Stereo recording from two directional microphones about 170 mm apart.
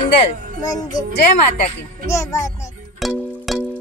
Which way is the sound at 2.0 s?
20° left (ahead or behind).